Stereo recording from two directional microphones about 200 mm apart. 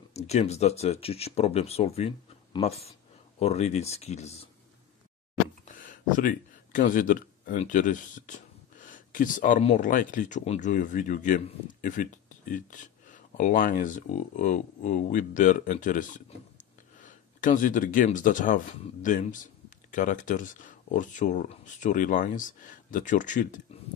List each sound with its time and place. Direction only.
0.1 s speech: 30° left (ahead or behind)
5.7 s speech: 40° left (ahead or behind)
16.5 s a sound: 40° left (ahead or behind)
19.0 s speech: 40° left (ahead or behind)